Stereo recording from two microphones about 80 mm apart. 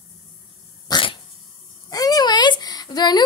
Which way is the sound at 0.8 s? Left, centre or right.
Left.